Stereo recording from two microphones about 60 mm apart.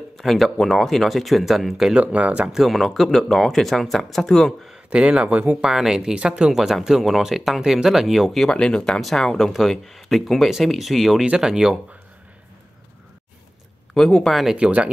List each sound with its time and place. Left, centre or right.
0.2 s speech: centre
2.0 s speech: centre
2.5 s speech: centre
4.8 s speech: centre
5.6 s speech: centre
8.5 s speech: centre
13.9 s speech: centre
14.6 s speech: centre